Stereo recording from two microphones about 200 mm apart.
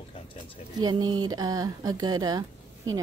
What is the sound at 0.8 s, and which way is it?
Speech, 20° right (ahead or behind).